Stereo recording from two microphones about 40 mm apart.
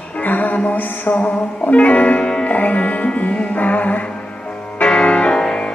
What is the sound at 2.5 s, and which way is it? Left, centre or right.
Music, left.